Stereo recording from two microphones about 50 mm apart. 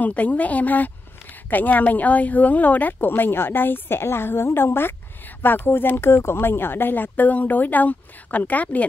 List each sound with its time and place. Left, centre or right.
0.0 s a woman's voice: left